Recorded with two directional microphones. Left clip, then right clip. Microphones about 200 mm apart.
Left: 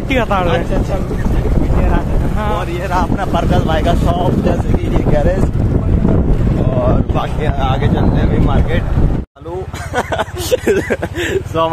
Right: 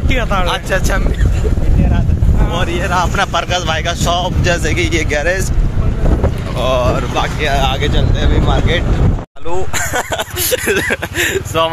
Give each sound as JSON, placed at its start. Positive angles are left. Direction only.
{"t": 0.1, "sound": "speech", "side_deg": 20}
{"t": 2.5, "sound": "speech", "side_deg": 5}
{"t": 7.4, "sound": "speech", "side_deg": 10}
{"t": 9.9, "sound": "a sound", "side_deg": 10}
{"t": 10.7, "sound": "speech", "side_deg": 15}